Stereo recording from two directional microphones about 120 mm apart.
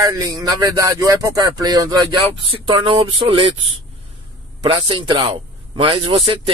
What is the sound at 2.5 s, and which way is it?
A man's voice, 45° right (ahead or behind).